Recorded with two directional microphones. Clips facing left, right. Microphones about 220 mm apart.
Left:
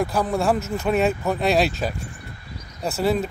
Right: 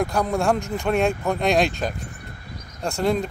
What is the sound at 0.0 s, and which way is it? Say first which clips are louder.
Speech: even; centre (ahead or behind).